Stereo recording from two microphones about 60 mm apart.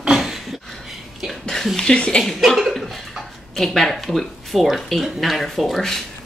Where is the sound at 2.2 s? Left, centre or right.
Centre.